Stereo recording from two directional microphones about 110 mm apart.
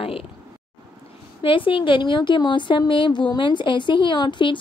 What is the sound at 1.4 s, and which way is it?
A woman's voice, 50° left (ahead or behind).